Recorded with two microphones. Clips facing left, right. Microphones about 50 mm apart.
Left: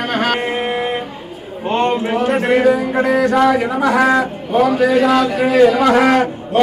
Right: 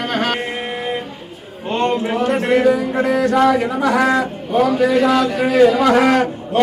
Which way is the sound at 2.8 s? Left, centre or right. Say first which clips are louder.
Left 2 dB; left.